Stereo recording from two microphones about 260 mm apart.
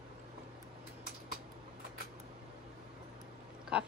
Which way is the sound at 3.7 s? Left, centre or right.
Centre.